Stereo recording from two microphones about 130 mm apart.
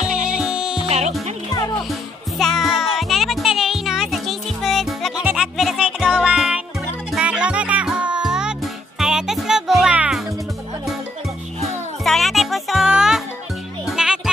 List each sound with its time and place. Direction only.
0.0 s music: 85° right
0.4 s music: 5° right (ahead or behind)
0.8 s speech: 60° right (ahead or behind)
1.9 s music: centre (ahead or behind)
12.0 s music: centre (ahead or behind)